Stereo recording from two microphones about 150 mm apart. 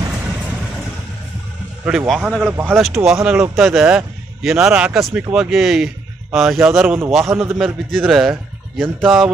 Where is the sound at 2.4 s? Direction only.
15° right (ahead or behind).